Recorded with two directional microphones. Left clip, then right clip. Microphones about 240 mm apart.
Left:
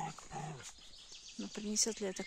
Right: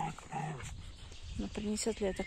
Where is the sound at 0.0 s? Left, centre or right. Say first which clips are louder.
Right 4 dB; right.